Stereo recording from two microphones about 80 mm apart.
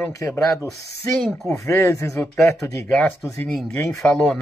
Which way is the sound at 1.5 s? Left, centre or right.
Left.